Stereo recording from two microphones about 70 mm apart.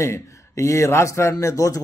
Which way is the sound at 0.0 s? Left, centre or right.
Left.